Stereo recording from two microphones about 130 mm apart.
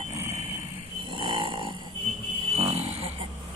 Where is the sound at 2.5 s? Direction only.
50° right (ahead or behind).